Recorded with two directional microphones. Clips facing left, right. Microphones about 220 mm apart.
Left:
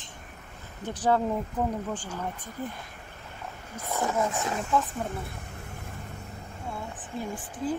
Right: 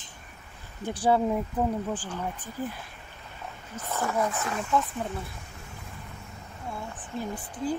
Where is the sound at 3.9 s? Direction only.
20° left (ahead or behind).